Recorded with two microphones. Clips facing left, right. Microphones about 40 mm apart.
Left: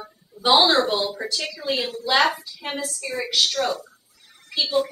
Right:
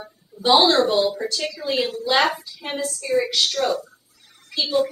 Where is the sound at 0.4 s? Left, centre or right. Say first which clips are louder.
Right 1 dB; centre.